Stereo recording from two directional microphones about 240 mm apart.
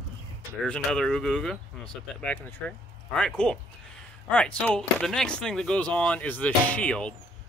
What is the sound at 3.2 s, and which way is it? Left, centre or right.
Speech, centre.